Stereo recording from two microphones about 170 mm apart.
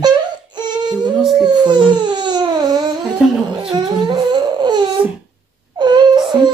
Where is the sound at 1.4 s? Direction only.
25° right (ahead or behind).